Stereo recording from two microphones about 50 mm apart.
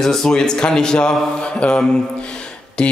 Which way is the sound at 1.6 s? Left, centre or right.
Left.